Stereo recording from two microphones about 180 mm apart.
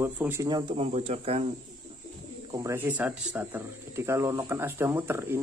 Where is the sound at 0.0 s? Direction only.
10° right (ahead or behind).